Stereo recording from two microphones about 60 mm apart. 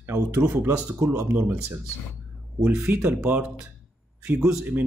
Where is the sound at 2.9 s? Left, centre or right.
Right.